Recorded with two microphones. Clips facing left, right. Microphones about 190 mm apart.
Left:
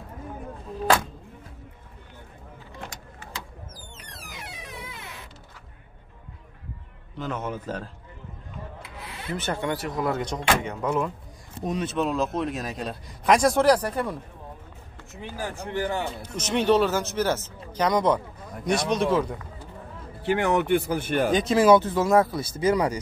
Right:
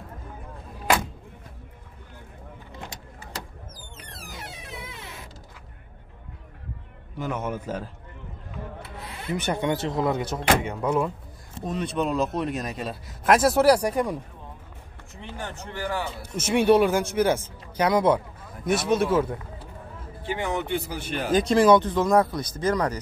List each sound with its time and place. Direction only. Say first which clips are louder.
7.2 s speech: right 1 dB; 10° right (ahead or behind)
9.3 s speech: right 3 dB; 15° right (ahead or behind)
10.1 s speech: right 2 dB; 5° right (ahead or behind)
11.8 s speech: right 1 dB; centre (ahead or behind)
15.1 s speech: left 3 dB; 5° left (ahead or behind)
16.2 s speech: right 3 dB; 10° right (ahead or behind)
20.2 s speech: left 6 dB; 70° left (ahead or behind); by 21.3 s 50° left (ahead or behind)
21.3 s speech: right 1 dB; centre (ahead or behind)